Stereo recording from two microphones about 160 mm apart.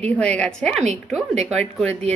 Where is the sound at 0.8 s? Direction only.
45° right (ahead or behind).